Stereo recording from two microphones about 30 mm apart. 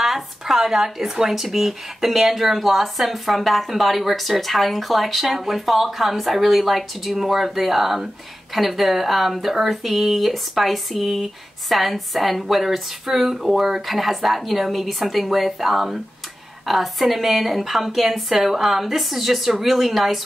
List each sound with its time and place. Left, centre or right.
0.0 s speech: centre